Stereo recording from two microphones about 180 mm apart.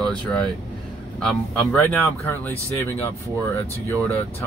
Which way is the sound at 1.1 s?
5° left (ahead or behind).